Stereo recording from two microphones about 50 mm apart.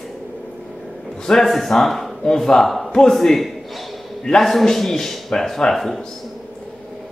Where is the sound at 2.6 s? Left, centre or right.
Centre.